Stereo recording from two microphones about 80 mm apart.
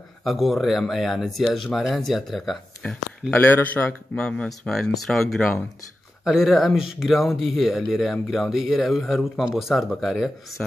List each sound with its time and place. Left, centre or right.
0.2 s speech: centre
2.8 s speech: centre
3.3 s speech: left; by 10.3 s centre